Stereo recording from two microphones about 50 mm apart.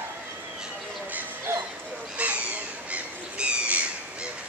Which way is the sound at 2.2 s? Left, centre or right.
Right.